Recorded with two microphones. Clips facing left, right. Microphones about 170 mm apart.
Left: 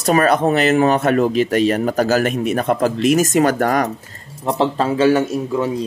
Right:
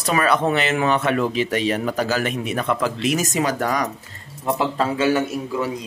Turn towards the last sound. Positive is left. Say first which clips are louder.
# left 4 dB
turn(degrees=30)  # may be behind; listen again after turning